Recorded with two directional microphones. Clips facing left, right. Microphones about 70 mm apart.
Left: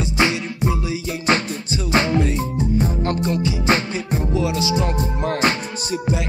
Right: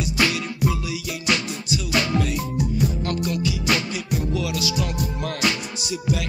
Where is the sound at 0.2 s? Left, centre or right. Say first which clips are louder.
Left 2 dB; left.